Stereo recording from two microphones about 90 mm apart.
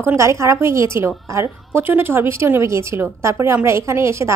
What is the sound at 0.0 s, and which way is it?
A woman's voice, 30° right (ahead or behind).